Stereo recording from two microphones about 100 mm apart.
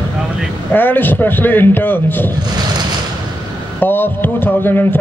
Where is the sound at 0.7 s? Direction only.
20° left (ahead or behind).